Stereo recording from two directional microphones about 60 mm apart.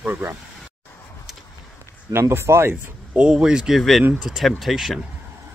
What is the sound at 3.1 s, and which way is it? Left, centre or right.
Speech, centre.